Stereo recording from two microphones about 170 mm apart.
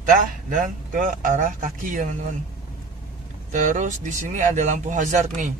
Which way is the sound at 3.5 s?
50° right (ahead or behind).